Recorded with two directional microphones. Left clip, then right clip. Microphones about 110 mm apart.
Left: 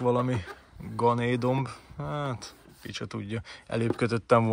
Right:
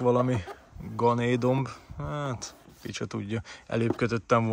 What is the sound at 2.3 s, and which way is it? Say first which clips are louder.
Speech: right 2 dB; 45° right (ahead or behind).